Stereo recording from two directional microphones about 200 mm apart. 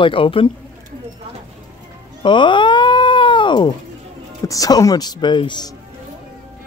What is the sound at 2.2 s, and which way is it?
Cat, 25° left (ahead or behind).